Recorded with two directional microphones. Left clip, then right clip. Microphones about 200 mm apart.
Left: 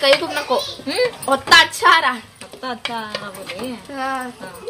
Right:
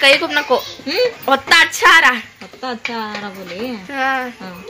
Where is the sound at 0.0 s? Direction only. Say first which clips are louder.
Right 4 dB; 10° right (ahead or behind).